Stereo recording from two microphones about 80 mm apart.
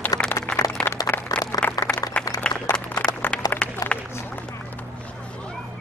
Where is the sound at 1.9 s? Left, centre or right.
Centre.